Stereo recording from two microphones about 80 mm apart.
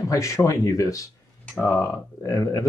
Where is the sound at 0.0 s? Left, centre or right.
Left.